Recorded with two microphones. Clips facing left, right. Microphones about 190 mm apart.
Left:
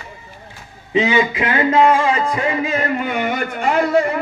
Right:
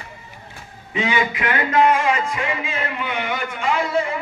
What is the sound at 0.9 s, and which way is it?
A man's voice, 25° left (ahead or behind).